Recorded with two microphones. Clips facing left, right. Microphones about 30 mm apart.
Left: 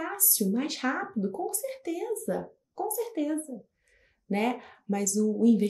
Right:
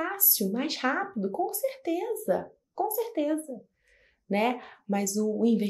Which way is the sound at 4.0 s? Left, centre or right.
Right.